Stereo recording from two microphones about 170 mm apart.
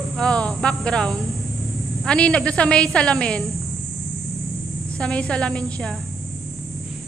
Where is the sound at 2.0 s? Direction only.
5° left (ahead or behind).